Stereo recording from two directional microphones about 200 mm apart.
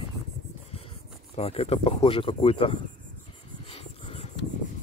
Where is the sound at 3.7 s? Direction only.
30° left (ahead or behind).